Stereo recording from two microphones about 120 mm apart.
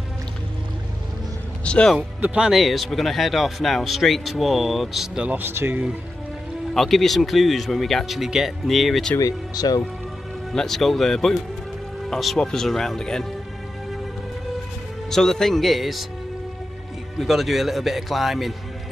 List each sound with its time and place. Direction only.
1.6 s speech: 10° left (ahead or behind)
2.0 s speech: 10° right (ahead or behind)
6.7 s speech: centre (ahead or behind)
9.2 s speech: 30° left (ahead or behind)
10.5 s speech: 5° left (ahead or behind)
15.0 s speech: 5° left (ahead or behind)
17.2 s speech: centre (ahead or behind)